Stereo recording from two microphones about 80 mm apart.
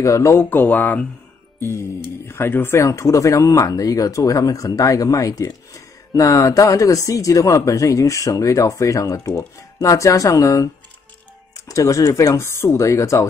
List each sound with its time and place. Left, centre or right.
0.0 s speech: left
1.6 s speech: left